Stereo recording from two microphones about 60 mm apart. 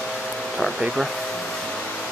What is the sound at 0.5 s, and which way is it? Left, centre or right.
Speech, centre.